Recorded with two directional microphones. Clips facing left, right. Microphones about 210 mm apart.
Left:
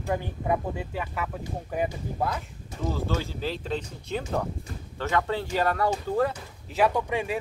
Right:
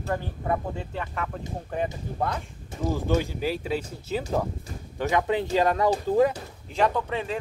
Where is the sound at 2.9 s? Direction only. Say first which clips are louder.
Right 6 dB; 15° right (ahead or behind).